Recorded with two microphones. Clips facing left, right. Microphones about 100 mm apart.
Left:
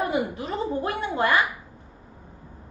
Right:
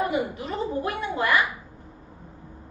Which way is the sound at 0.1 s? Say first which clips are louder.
Left 1 dB; 35° left (ahead or behind).